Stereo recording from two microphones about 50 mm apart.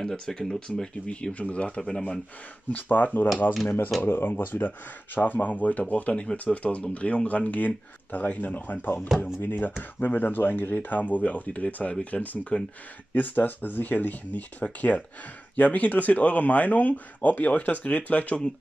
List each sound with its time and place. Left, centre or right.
0.0 s speech: centre
2.7 s speech: left